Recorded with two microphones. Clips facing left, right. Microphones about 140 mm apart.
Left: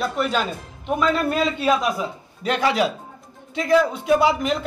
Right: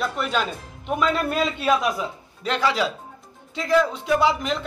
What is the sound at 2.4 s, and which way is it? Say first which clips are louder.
A man's voice: left 2 dB; 15° left (ahead or behind).